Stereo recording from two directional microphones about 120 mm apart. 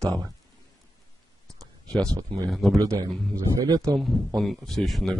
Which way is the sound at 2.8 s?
30° right (ahead or behind).